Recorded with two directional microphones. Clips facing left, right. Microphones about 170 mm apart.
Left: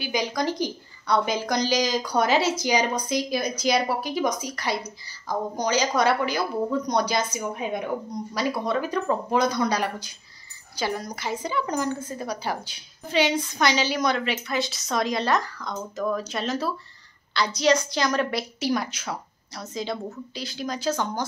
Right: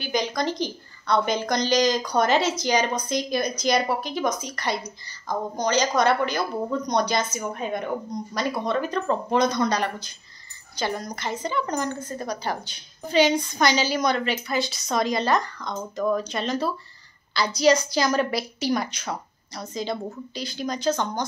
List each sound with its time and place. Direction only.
0.0 s a woman's voice: 10° left (ahead or behind)